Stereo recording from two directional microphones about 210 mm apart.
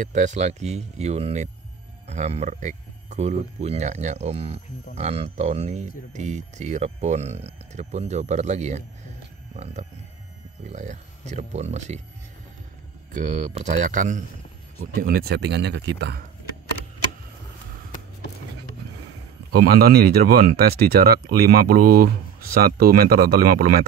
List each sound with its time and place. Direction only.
0.0 s speech: 35° right (ahead or behind)
10.7 s speech: 35° right (ahead or behind)
13.1 s speech: 35° right (ahead or behind); by 16.3 s 50° right (ahead or behind)
19.5 s speech: 45° right (ahead or behind)